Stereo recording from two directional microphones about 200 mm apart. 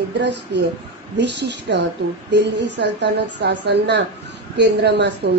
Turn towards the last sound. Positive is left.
turn(degrees=-55)  # may be behind; listen again after turning